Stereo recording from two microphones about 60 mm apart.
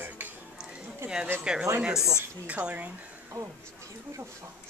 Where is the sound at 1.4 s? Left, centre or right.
Centre.